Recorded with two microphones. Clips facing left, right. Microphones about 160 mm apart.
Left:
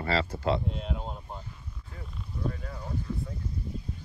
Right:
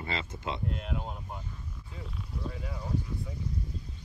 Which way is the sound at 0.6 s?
Centre (ahead or behind).